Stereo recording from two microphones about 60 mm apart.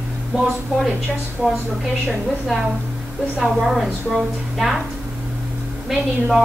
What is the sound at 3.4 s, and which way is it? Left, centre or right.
A woman's voice, centre.